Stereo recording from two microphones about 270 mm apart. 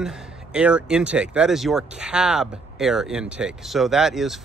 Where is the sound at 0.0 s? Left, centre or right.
Centre.